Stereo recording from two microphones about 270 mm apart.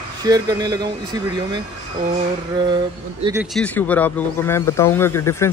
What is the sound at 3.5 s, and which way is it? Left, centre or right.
Speech, centre.